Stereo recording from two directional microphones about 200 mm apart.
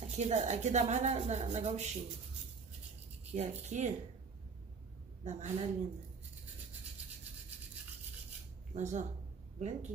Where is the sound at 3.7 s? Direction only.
35° right (ahead or behind).